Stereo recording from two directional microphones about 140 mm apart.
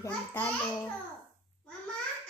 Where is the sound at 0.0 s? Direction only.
15° left (ahead or behind).